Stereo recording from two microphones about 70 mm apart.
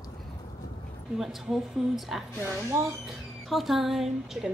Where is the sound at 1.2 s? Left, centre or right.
Centre.